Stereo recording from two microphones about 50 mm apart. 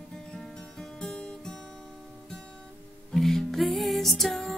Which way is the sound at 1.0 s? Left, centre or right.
Centre.